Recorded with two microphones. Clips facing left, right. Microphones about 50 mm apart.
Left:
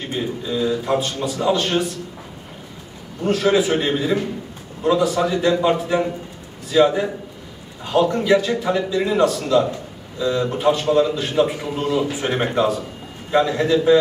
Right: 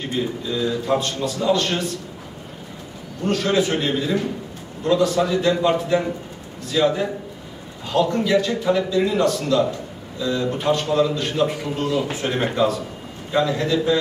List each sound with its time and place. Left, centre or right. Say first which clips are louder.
0.6 s a man's voice: left 1 dB; centre
3.3 s a man's voice: left 3 dB; centre